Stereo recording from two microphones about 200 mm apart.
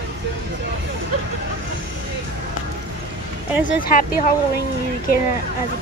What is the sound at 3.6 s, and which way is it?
Speech, 40° left (ahead or behind).